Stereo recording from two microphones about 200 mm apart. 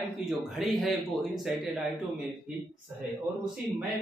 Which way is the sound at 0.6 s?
Centre (ahead or behind).